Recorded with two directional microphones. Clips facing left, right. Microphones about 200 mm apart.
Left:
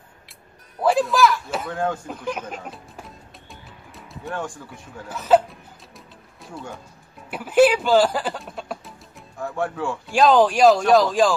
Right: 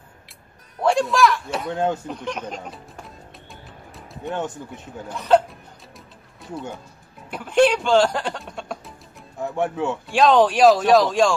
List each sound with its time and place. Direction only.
0.7 s speech: centre (ahead or behind)
1.7 s speech: 20° right (ahead or behind)
2.0 s speech: 5° left (ahead or behind)
4.2 s speech: 20° right (ahead or behind)
5.0 s music: 5° left (ahead or behind)
7.2 s speech: 5° left (ahead or behind)
9.4 s speech: 20° right (ahead or behind)
10.0 s speech: centre (ahead or behind)